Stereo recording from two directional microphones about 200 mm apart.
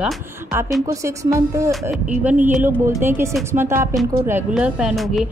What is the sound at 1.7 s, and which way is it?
A woman's voice, 5° right (ahead or behind).